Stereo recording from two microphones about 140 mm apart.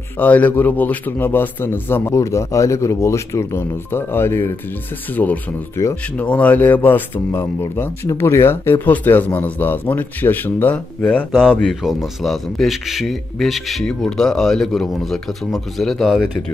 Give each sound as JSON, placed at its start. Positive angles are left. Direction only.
{"t": 0.2, "sound": "speech", "side_deg": 10}